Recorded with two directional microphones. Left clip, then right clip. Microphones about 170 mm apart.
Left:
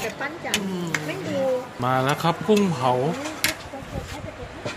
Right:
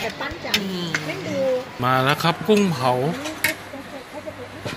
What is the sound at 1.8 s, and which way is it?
Speech, 5° left (ahead or behind).